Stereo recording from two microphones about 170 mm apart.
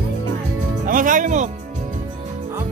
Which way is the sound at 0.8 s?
50° right (ahead or behind).